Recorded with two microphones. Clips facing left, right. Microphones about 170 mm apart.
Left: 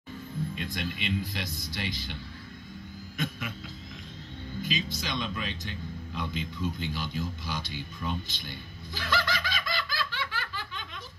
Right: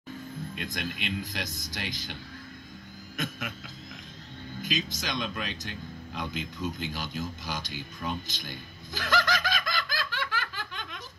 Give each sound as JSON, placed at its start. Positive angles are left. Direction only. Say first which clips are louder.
{"t": 0.6, "sound": "speech", "louder": "left 1 dB", "side_deg": -45}
{"t": 3.2, "sound": "speech", "louder": "left 1 dB", "side_deg": -45}
{"t": 4.6, "sound": "a man's voice", "louder": "even", "side_deg": -45}